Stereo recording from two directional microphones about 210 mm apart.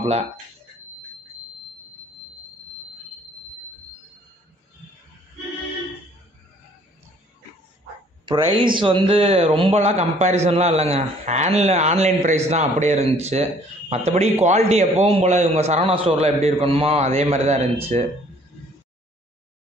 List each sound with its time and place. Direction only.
8.5 s speech: 25° right (ahead or behind)